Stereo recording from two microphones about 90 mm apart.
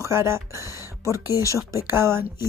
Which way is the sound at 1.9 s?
25° right (ahead or behind).